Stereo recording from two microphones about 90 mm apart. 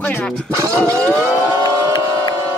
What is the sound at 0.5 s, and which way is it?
Speech, 35° right (ahead or behind).